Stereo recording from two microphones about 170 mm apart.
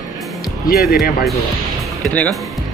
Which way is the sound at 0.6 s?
60° left (ahead or behind).